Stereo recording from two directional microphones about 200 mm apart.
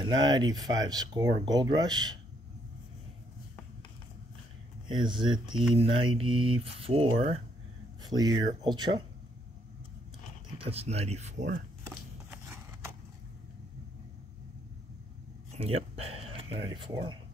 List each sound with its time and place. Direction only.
0.0 s speech: 20° right (ahead or behind)
4.8 s speech: 20° right (ahead or behind)
10.6 s speech: 30° right (ahead or behind)
11.9 s a sound: 10° right (ahead or behind)
15.5 s speech: 30° right (ahead or behind)